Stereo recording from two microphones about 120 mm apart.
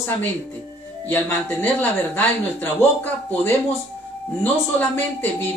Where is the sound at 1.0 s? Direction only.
15° left (ahead or behind).